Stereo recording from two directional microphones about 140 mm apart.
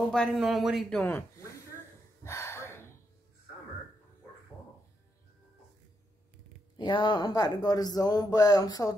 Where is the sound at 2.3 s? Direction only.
20° left (ahead or behind).